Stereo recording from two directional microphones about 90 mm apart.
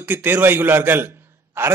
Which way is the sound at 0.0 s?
20° right (ahead or behind).